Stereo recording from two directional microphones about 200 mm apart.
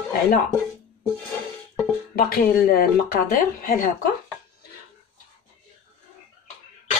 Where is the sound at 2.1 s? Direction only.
50° left (ahead or behind).